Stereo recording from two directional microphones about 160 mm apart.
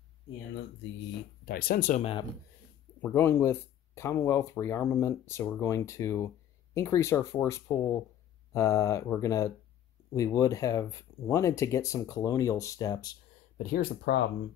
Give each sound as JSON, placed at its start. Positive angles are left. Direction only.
{"t": 1.4, "sound": "speech", "side_deg": 70}
{"t": 3.0, "sound": "speech", "side_deg": 15}
{"t": 13.6, "sound": "speech", "side_deg": 65}